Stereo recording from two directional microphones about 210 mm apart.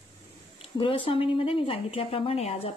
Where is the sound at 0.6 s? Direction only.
25° left (ahead or behind).